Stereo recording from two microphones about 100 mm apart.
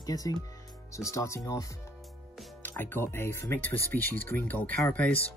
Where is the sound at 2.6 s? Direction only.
20° left (ahead or behind).